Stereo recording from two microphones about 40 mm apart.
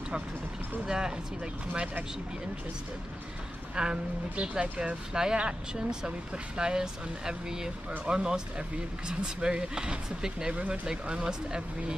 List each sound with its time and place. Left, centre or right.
0.8 s speech: centre
3.7 s speech: centre